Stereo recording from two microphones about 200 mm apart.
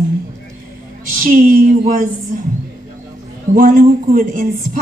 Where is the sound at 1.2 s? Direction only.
45° right (ahead or behind).